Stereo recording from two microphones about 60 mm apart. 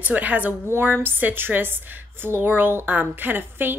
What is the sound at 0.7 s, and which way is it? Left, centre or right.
A woman's voice, right.